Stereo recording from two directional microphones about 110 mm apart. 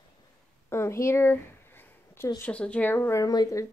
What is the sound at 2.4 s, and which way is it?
Speech, 10° left (ahead or behind).